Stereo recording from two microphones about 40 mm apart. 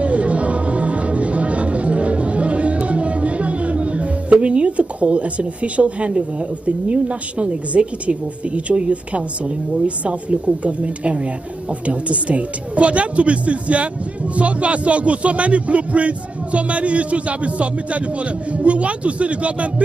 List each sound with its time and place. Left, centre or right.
0.0 s music: right
6.9 s a woman's voice: right